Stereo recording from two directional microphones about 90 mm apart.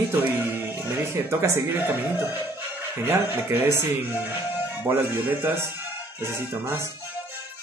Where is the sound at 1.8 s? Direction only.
25° right (ahead or behind).